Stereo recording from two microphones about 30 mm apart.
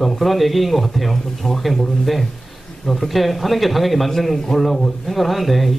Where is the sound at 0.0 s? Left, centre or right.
Centre.